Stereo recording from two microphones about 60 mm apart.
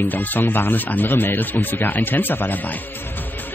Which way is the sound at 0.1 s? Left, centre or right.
Left.